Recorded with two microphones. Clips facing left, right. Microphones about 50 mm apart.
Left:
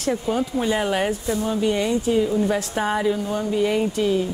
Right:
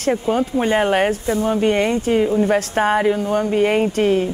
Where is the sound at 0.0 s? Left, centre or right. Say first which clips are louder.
Right 4 dB; right.